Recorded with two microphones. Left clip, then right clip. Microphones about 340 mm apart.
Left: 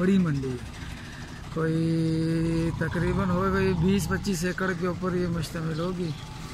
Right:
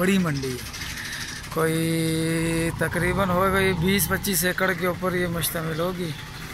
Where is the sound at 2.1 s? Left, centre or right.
Centre.